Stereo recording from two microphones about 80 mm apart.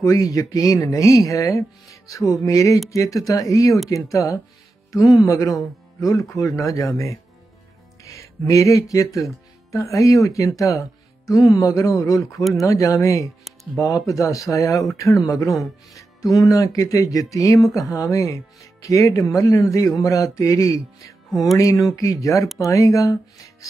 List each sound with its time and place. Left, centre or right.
0.0 s speech: left
21.3 s speech: centre
21.5 s speech: left